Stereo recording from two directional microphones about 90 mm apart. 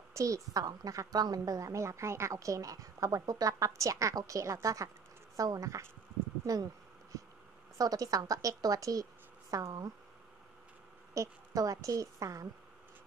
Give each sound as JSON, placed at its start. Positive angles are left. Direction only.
{"t": 0.1, "sound": "a woman's voice", "side_deg": -35}
{"t": 6.4, "sound": "insect", "side_deg": -40}
{"t": 7.7, "sound": "a woman's voice", "side_deg": -40}
{"t": 11.1, "sound": "a woman's voice", "side_deg": -40}